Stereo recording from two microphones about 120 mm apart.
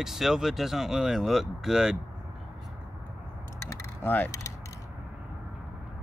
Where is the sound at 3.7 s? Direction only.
20° left (ahead or behind).